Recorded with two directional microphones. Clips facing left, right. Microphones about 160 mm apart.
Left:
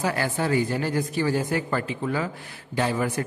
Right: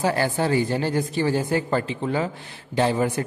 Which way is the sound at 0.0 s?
30° right (ahead or behind).